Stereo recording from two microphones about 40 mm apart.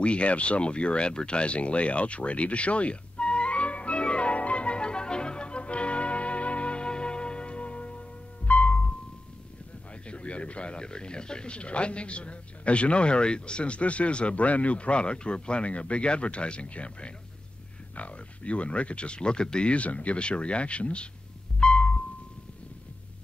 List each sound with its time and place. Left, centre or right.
0.0 s a sound: left
8.5 s music: left
10.0 s speech: left
21.5 s music: left